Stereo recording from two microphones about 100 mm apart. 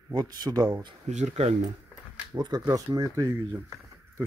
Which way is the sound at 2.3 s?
45° right (ahead or behind).